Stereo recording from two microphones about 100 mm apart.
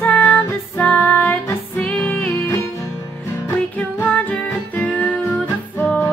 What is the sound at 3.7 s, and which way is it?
Music, 15° left (ahead or behind).